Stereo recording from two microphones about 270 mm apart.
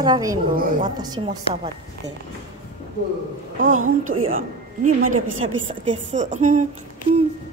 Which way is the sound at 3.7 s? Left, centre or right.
Right.